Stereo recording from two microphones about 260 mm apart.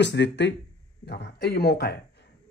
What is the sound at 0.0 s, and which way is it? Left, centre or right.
Speech, left.